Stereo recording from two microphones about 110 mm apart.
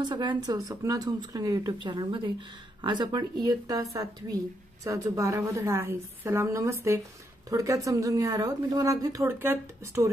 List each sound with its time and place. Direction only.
0.0 s speech: 45° right (ahead or behind)
1.8 s a woman's voice: 45° right (ahead or behind); by 10.0 s 25° right (ahead or behind)